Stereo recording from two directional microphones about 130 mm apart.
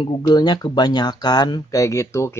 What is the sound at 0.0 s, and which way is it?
Speech, 35° left (ahead or behind).